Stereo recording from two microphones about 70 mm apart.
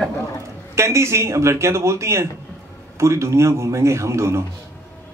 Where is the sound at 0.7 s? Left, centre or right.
Right.